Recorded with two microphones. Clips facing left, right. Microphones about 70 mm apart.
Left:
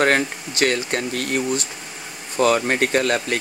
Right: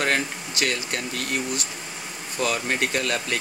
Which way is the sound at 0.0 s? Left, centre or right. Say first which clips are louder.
Left 6 dB; left.